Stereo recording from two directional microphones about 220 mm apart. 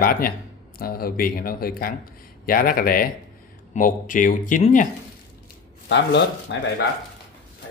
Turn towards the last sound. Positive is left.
turn(degrees=55)  # may be behind; listen again after turning